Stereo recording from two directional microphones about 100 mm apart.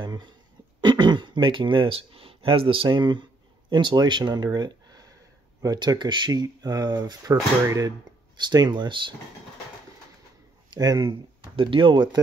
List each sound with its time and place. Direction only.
0.0 s throat clearing: 50° right (ahead or behind)
0.7 s speech: 50° right (ahead or behind); by 7.9 s 35° right (ahead or behind)
8.4 s speech: 45° right (ahead or behind)
10.7 s speech: 40° right (ahead or behind)
11.5 s speech: 60° right (ahead or behind)